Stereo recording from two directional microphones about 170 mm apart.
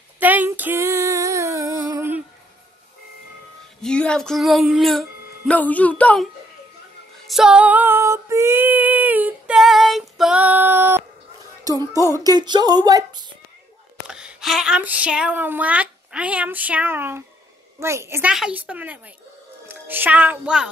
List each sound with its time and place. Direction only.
0.2 s female singing: 10° right (ahead or behind)
3.8 s speech: 5° left (ahead or behind)
7.2 s female singing: centre (ahead or behind)
11.6 s music: 20° right (ahead or behind)
12.1 s speech: 20° right (ahead or behind)
14.0 s speech: 5° right (ahead or behind)